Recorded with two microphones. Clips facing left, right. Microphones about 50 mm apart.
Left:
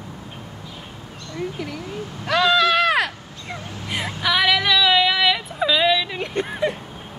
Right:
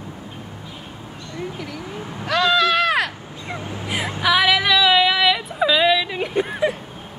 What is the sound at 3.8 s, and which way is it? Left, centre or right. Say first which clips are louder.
Vehicle: right 1 dB; centre.